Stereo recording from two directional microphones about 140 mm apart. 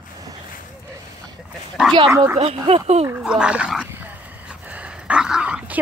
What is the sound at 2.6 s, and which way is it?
Speech, 50° right (ahead or behind).